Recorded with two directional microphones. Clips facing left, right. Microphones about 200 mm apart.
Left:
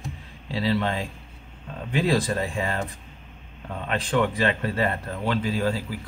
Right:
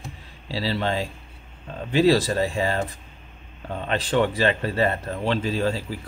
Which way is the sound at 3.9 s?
35° right (ahead or behind).